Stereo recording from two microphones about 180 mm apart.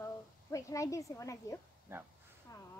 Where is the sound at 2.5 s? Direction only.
20° left (ahead or behind).